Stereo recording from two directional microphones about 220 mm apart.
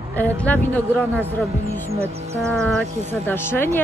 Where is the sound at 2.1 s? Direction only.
30° right (ahead or behind).